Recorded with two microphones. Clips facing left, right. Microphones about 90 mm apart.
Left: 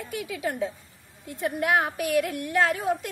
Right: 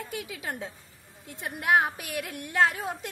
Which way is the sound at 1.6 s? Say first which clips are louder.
Right 1 dB; 25° right (ahead or behind).